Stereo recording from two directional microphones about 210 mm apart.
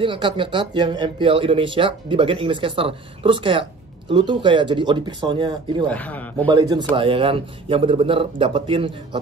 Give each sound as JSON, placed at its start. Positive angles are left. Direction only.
{"t": 0.0, "sound": "speech", "side_deg": -25}
{"t": 5.9, "sound": "speech", "side_deg": 5}
{"t": 6.5, "sound": "speech", "side_deg": -20}